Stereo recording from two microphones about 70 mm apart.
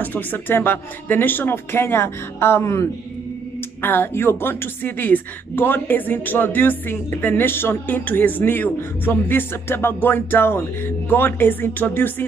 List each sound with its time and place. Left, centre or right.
0.0 s speech: left
3.8 s speech: left